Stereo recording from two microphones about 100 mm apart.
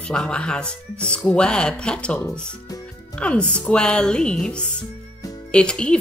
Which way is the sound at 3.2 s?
10° left (ahead or behind).